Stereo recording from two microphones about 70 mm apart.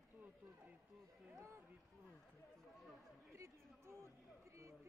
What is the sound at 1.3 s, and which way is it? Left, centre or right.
Speech, right.